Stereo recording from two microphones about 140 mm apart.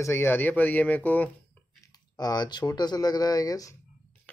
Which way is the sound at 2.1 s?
30° left (ahead or behind).